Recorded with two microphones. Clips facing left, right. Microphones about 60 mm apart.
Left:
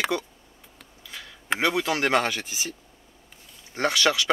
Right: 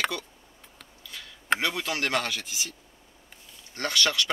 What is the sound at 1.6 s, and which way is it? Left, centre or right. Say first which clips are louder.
Speech: left 5 dB; left.